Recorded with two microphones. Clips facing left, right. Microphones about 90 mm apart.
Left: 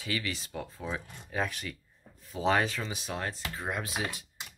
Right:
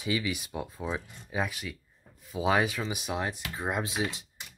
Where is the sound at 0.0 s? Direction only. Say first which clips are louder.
Right 4 dB; 15° right (ahead or behind).